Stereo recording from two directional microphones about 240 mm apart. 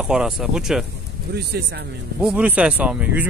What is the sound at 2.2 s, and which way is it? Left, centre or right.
Speech, centre.